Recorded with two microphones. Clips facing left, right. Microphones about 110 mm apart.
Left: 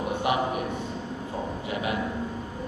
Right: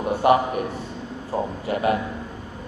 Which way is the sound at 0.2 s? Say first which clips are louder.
Right 9 dB; 45° right (ahead or behind).